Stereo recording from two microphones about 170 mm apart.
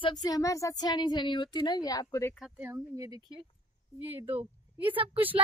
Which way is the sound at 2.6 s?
15° right (ahead or behind).